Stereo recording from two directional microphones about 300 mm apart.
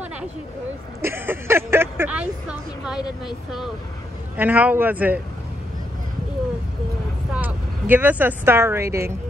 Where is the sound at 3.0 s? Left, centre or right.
Centre.